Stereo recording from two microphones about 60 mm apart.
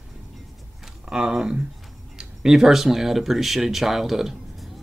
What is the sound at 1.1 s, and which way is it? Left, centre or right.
Speech, centre.